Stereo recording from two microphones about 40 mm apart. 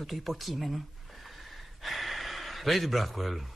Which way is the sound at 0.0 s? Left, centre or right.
Centre.